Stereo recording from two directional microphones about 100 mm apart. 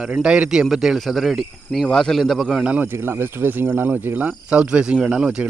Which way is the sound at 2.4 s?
10° right (ahead or behind).